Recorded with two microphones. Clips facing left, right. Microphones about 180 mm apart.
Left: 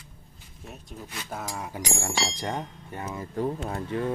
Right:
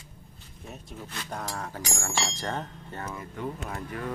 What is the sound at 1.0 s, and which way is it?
Speech, 5° left (ahead or behind).